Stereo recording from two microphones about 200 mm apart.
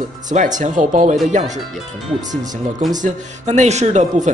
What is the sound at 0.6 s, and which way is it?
Speech, 40° right (ahead or behind).